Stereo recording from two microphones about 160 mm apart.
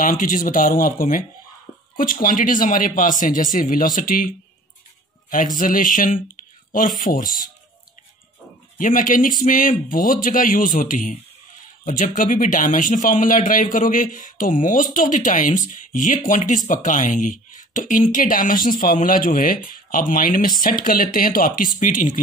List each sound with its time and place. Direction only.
0.0 s speech: 55° left (ahead or behind)
5.6 s speech: 55° left (ahead or behind)
8.7 s speech: 55° left (ahead or behind)